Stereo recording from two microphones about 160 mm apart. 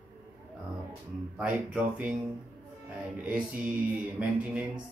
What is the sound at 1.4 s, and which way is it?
Speech, 5° right (ahead or behind).